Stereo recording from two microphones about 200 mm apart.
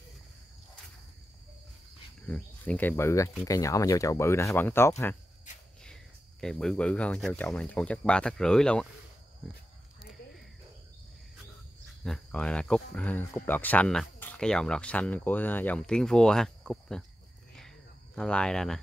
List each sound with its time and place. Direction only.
2.2 s speech: 5° left (ahead or behind)
6.4 s speech: 5° left (ahead or behind)
12.0 s speech: 5° left (ahead or behind)
17.6 s a sound: centre (ahead or behind)